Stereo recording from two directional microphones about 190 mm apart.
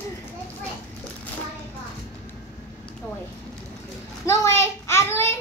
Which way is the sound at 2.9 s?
5° left (ahead or behind).